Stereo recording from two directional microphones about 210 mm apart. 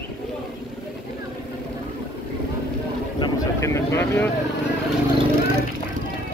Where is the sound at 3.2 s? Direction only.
15° left (ahead or behind).